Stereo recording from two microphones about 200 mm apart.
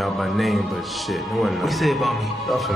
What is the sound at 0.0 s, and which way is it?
A man's voice, centre (ahead or behind).